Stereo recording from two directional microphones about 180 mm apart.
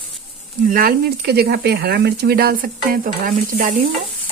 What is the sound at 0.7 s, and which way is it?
Speech, 55° right (ahead or behind).